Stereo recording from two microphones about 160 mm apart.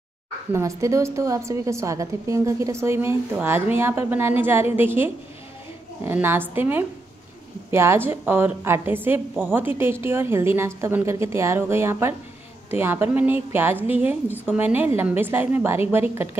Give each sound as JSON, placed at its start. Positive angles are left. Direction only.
{"t": 0.5, "sound": "a woman's voice", "side_deg": -20}